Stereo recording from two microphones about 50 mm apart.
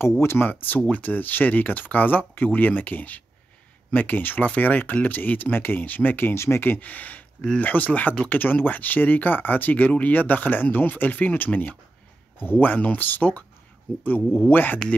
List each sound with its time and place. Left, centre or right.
0.2 s speech: left
0.5 s speech: left
6.3 s speech: left
6.6 s speech: left
14.5 s speech: left